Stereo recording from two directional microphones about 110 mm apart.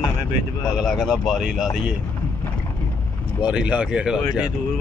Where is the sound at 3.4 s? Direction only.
10° right (ahead or behind).